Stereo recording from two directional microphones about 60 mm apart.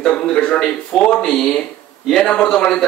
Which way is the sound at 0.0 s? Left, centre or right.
Centre.